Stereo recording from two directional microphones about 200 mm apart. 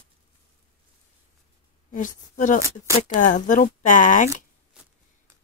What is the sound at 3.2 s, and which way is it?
Speech, 40° left (ahead or behind).